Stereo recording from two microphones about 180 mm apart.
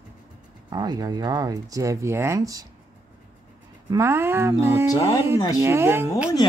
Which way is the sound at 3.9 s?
15° right (ahead or behind).